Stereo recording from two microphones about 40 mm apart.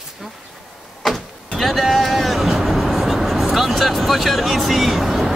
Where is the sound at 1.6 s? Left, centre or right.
Centre.